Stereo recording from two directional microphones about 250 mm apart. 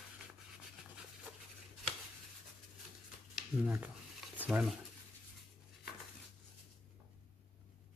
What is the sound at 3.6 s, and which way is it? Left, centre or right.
Speech, centre.